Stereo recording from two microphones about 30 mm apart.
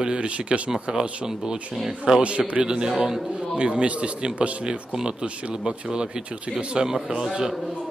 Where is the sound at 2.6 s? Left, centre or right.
Right.